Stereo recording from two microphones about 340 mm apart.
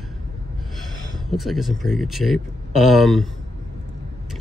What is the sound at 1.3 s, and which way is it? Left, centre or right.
Speech, centre.